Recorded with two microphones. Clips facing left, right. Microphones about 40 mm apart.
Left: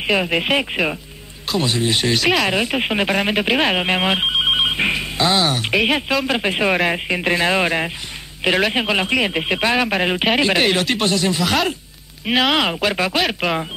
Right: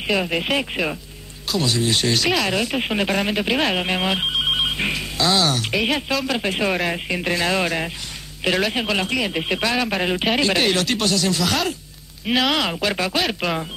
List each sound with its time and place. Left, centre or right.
0.0 s speech: left
2.5 s speech: left